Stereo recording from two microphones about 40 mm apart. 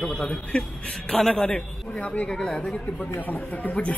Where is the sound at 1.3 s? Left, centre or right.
Left.